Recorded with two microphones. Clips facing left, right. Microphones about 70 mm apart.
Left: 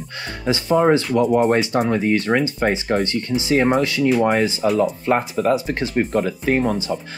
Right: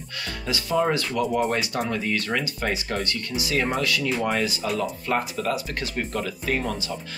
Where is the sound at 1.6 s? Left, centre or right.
Left.